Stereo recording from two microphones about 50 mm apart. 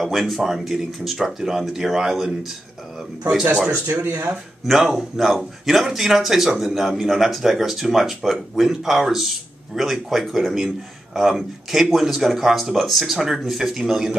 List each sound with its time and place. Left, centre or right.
0.0 s speech: centre
3.7 s speech: right
4.6 s speech: centre